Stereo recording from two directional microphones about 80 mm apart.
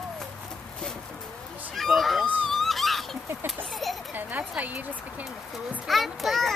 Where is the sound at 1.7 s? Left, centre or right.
Centre.